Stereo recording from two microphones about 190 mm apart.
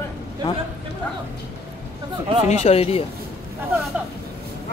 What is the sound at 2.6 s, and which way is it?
Speech, 35° left (ahead or behind).